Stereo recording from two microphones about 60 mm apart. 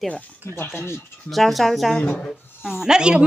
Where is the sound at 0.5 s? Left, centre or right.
Left.